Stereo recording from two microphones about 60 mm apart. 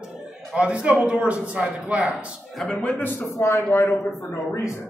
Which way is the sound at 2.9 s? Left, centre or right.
Left.